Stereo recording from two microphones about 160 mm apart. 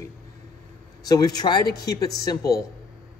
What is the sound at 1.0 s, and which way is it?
Speech, 25° left (ahead or behind).